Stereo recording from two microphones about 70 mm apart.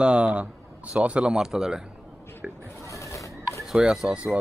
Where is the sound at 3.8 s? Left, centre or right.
Centre.